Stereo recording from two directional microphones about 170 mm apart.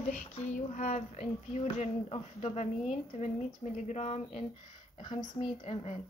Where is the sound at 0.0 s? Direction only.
45° left (ahead or behind).